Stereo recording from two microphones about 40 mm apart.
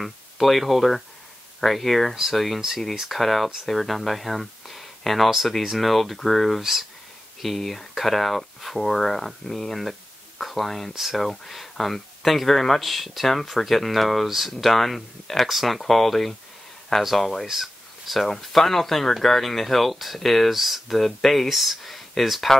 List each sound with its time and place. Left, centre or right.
0.0 s speech: centre